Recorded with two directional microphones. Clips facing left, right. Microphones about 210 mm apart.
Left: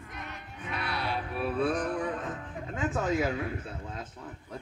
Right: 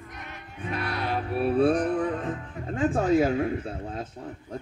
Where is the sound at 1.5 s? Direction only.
30° right (ahead or behind).